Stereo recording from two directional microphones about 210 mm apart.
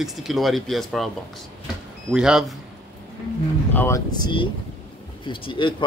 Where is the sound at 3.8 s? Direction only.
15° left (ahead or behind).